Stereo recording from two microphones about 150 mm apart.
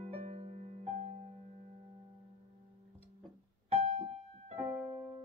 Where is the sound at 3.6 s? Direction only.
45° right (ahead or behind).